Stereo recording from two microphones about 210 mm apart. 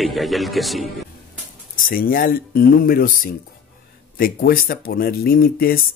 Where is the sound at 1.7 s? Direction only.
40° left (ahead or behind).